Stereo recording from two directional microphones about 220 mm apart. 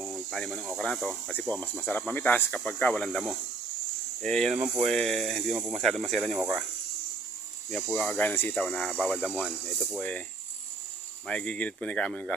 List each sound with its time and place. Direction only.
0.1 s speech: centre (ahead or behind)
7.7 s speech: 5° left (ahead or behind)
11.2 s speech: 5° left (ahead or behind)